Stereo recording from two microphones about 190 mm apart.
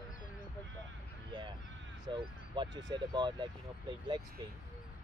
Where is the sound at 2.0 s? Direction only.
25° right (ahead or behind).